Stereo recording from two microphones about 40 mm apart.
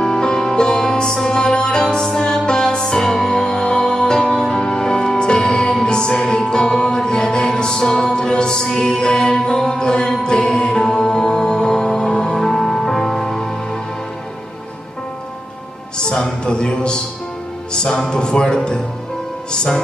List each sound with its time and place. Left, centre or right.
0.0 s music: centre
16.0 s music: centre
16.4 s a sound: centre
18.1 s speech: centre